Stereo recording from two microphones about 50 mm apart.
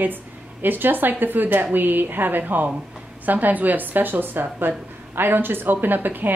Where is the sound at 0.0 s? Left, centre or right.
Right.